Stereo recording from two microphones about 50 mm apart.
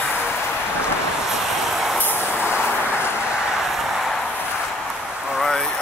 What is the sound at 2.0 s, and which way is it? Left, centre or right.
Vehicle, right.